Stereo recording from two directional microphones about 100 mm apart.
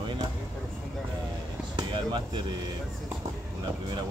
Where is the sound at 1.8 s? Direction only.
45° right (ahead or behind).